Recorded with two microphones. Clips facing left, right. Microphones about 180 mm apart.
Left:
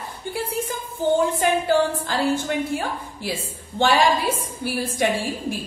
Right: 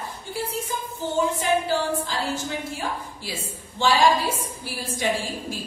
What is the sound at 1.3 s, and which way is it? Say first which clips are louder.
Speech: left 4 dB; 60° left (ahead or behind).